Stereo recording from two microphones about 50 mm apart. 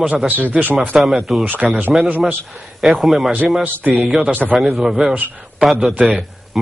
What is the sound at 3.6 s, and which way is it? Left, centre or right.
Speech, right.